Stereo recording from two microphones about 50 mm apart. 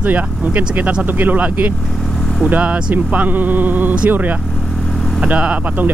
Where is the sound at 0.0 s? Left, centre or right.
Right.